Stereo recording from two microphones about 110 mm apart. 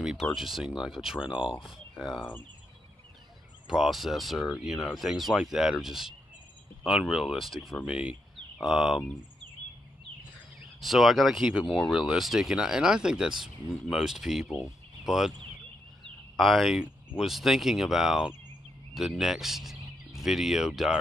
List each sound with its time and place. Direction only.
0.0 s speech: 5° right (ahead or behind)
3.6 s speech: 5° right (ahead or behind)
10.8 s speech: centre (ahead or behind)
16.3 s speech: centre (ahead or behind)